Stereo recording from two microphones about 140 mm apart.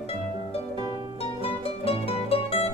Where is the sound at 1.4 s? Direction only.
45° left (ahead or behind).